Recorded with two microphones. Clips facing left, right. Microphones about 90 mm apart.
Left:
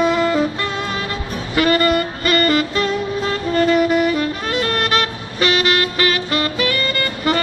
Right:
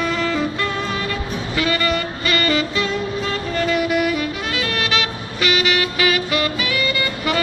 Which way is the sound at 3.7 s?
35° left (ahead or behind).